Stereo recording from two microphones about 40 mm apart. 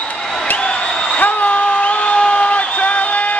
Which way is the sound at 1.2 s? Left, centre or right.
Left.